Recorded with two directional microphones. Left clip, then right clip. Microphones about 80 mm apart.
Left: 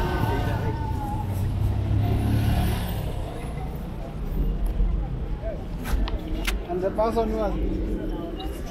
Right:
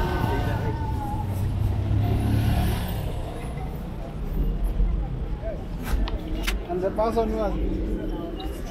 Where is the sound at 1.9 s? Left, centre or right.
Centre.